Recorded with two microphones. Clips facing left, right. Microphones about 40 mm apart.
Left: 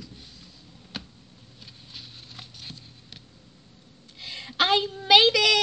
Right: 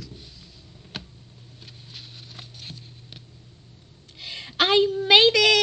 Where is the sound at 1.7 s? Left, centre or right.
Right.